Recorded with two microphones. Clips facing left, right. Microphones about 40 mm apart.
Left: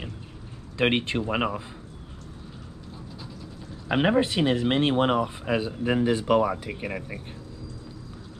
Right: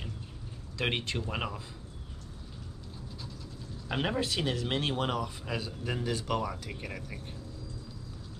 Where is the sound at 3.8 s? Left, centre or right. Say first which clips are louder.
Left 9 dB; left.